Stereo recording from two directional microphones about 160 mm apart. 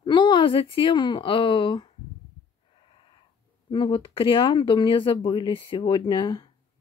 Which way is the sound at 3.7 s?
35° left (ahead or behind).